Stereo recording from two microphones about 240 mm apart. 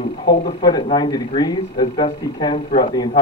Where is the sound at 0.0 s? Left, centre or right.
Left.